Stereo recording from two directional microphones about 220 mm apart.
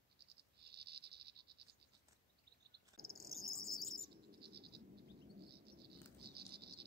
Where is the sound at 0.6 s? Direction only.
45° right (ahead or behind).